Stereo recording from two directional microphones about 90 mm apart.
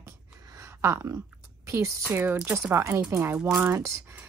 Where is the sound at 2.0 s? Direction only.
20° right (ahead or behind).